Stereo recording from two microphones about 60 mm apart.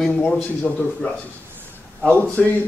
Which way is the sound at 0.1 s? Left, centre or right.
Centre.